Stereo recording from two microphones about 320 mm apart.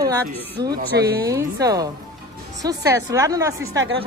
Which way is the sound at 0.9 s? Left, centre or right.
Right.